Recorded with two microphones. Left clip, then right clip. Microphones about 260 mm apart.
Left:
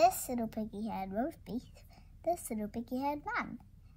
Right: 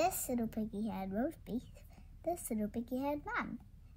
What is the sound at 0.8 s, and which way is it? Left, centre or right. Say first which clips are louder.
Child singing: left 3 dB; centre.